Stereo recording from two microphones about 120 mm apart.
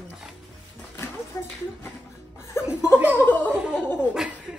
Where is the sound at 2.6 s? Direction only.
20° left (ahead or behind).